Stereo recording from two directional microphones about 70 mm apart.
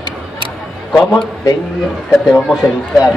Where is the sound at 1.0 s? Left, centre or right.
Centre.